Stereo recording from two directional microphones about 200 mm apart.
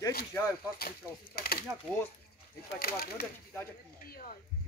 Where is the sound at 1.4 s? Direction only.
50° left (ahead or behind).